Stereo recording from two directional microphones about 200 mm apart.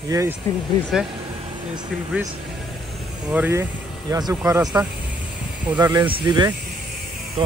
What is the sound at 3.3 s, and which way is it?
Speech, 10° right (ahead or behind).